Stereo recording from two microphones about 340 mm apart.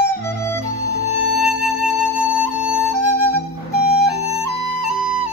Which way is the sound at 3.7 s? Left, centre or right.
Left.